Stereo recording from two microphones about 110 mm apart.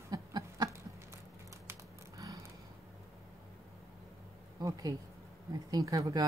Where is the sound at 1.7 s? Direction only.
30° right (ahead or behind).